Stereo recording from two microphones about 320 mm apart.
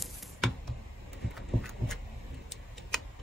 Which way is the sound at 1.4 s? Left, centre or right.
Centre.